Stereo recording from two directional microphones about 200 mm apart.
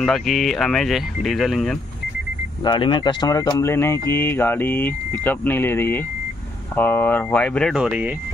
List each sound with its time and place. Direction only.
0.0 s speech: centre (ahead or behind)
2.6 s speech: 20° left (ahead or behind); by 8.1 s 5° right (ahead or behind)